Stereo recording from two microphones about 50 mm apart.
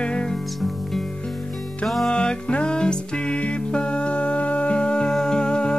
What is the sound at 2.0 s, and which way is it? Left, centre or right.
Music, centre.